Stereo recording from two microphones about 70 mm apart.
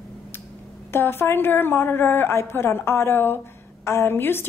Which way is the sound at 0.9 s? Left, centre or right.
Left.